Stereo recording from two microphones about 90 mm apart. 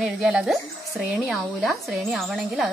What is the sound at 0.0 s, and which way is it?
Speech, 5° right (ahead or behind).